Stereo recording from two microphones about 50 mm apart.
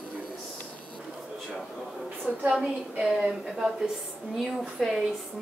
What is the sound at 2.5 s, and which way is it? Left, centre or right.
A woman's voice, centre.